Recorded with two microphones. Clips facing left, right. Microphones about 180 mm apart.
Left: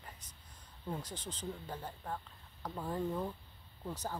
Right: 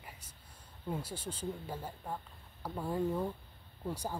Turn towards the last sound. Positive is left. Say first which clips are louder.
# right 3 dB
turn(degrees=-10)  # may be behind; listen again after turning